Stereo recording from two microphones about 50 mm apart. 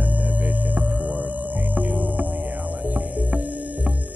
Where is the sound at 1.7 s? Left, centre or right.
Right.